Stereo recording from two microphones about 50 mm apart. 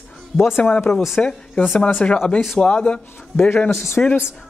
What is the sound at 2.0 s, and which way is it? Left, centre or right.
Speech, left.